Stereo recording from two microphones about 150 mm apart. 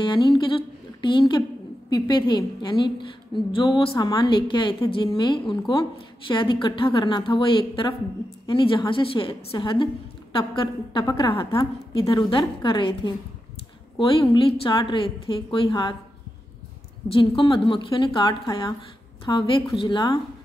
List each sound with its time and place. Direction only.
0.0 s a woman's voice: 35° left (ahead or behind)
17.1 s a woman's voice: 35° left (ahead or behind)